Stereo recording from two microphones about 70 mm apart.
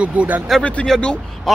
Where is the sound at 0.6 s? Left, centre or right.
Centre.